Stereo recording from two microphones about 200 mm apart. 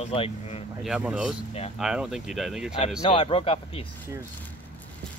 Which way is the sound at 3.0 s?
25° left (ahead or behind).